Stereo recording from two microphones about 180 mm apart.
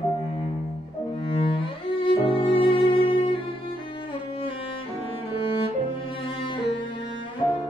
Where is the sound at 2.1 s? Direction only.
30° left (ahead or behind).